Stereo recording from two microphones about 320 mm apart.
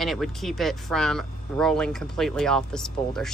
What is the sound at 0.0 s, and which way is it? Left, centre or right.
Speech, centre.